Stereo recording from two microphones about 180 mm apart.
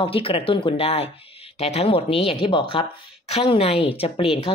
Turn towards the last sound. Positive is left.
turn(degrees=30)  # may be behind; listen again after turning